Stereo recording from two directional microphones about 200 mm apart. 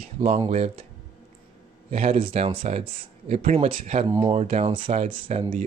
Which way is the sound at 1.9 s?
30° right (ahead or behind).